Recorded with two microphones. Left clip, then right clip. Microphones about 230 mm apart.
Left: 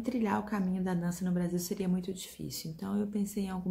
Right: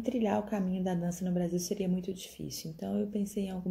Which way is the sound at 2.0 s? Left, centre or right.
Centre.